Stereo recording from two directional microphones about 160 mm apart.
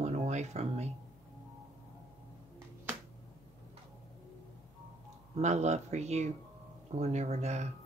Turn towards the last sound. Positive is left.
turn(degrees=-45)  # may be behind; listen again after turning